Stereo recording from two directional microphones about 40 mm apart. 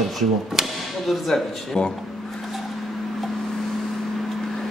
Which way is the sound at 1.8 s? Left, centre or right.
Centre.